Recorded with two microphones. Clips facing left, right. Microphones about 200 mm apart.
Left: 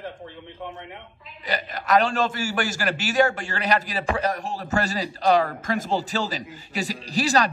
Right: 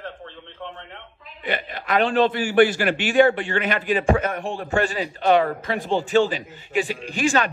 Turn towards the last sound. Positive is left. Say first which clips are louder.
# even
turn(degrees=35)  # may be behind; listen again after turning